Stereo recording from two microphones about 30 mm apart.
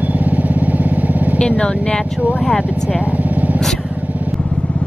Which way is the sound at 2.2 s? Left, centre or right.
Right.